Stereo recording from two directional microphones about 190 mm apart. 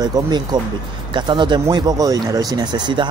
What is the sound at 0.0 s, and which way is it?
Speech, 20° right (ahead or behind).